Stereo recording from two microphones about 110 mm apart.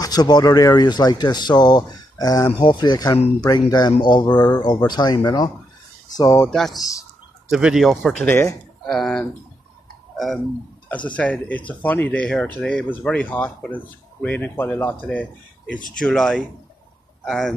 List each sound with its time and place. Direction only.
0.0 s speech: 35° left (ahead or behind)
6.5 s speech: centre (ahead or behind)
10.1 s a sound: centre (ahead or behind)
11.1 s speech: 10° left (ahead or behind)
15.7 s speech: 5° left (ahead or behind)